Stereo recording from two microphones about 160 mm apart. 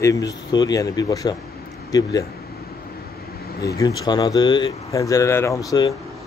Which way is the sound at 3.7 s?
25° left (ahead or behind).